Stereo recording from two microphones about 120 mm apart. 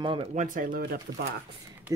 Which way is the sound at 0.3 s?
90° right.